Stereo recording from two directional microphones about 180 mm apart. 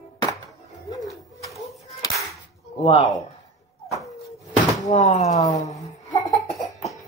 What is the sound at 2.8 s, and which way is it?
Speech, 35° left (ahead or behind).